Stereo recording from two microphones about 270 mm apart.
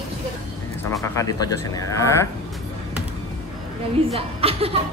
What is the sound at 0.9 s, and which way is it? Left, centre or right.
Speech, centre.